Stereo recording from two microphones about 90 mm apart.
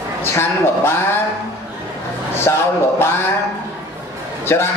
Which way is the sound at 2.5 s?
30° left (ahead or behind).